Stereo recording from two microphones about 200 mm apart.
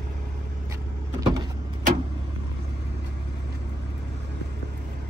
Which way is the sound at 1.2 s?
20° right (ahead or behind).